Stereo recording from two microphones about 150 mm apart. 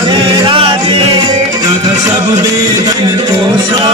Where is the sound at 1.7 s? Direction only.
25° right (ahead or behind).